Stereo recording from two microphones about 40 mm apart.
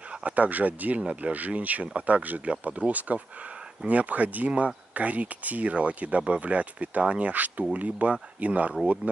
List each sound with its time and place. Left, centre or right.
0.2 s speech: right